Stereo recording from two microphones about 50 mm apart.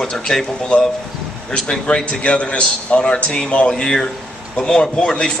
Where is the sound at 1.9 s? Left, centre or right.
Left.